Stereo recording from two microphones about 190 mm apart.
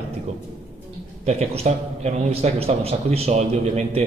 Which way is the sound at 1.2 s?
35° right (ahead or behind).